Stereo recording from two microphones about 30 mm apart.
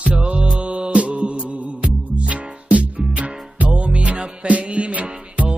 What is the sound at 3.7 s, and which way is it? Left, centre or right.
Music, right.